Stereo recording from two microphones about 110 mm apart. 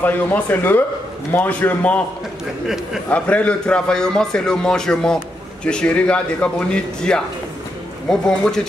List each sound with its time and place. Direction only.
0.0 s a man's voice: 15° left (ahead or behind)
3.1 s a man's voice: 10° left (ahead or behind)